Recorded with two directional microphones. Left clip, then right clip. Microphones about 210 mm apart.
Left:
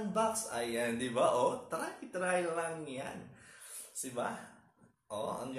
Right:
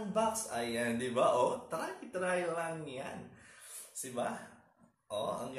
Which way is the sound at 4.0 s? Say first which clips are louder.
Even; centre (ahead or behind).